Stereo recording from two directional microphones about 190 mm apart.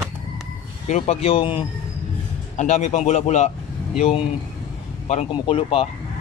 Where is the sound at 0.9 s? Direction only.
30° left (ahead or behind).